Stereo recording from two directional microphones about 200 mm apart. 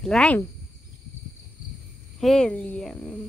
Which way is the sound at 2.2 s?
5° left (ahead or behind).